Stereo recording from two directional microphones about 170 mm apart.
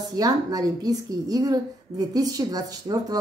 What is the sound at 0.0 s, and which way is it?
A woman's voice, 20° right (ahead or behind).